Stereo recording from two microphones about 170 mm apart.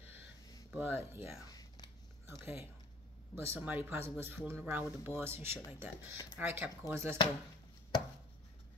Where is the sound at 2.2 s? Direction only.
15° right (ahead or behind).